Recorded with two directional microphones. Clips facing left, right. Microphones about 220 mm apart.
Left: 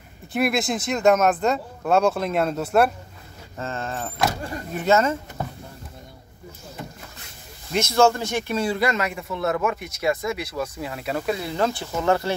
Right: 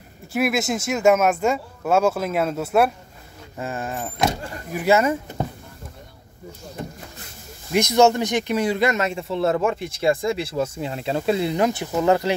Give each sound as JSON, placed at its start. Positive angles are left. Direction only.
{"t": 0.3, "sound": "speech", "side_deg": -5}
{"t": 3.5, "sound": "speech", "side_deg": -15}
{"t": 5.4, "sound": "a sound", "side_deg": -20}
{"t": 7.7, "sound": "speech", "side_deg": -15}